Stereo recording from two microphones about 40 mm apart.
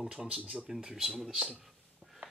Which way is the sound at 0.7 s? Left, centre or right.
Centre.